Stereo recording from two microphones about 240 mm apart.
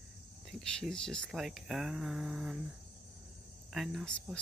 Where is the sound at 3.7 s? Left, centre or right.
Centre.